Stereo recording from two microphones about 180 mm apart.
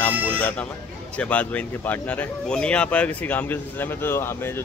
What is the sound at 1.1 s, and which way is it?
Speech, 5° left (ahead or behind).